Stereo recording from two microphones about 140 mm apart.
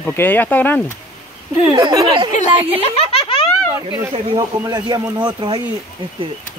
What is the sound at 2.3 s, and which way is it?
Speech, 45° left (ahead or behind).